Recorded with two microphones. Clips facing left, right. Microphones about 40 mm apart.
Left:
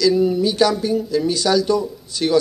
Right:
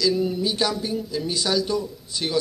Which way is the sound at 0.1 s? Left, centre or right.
Centre.